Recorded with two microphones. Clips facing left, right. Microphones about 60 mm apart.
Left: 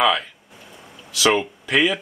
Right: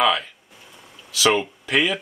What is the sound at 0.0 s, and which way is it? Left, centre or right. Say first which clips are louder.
Speech: left 1 dB; centre.